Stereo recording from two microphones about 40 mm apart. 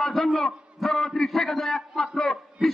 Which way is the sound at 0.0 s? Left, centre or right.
Centre.